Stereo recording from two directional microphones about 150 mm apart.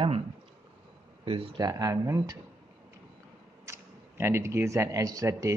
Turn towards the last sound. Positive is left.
turn(degrees=-20)  # may be behind; listen again after turning